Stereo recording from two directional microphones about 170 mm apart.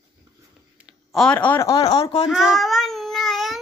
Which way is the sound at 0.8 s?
Centre (ahead or behind).